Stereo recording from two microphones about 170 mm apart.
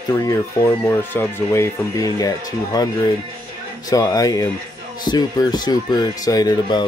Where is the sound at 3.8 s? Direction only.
20° left (ahead or behind).